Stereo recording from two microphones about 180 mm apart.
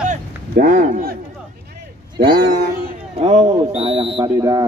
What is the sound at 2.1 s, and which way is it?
Speech, 25° right (ahead or behind).